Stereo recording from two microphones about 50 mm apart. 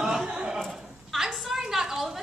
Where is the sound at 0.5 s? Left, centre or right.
Centre.